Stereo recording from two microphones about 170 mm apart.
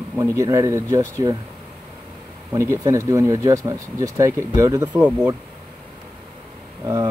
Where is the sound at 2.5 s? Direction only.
15° right (ahead or behind).